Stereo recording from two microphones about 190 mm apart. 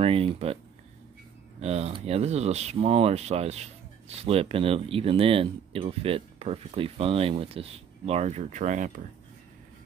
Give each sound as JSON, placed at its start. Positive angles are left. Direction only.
{"t": 0.0, "sound": "speech", "side_deg": -30}
{"t": 1.6, "sound": "speech", "side_deg": -35}